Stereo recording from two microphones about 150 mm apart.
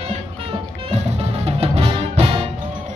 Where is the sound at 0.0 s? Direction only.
40° right (ahead or behind).